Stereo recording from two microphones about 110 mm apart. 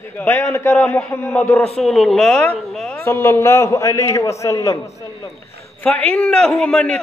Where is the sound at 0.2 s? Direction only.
25° left (ahead or behind).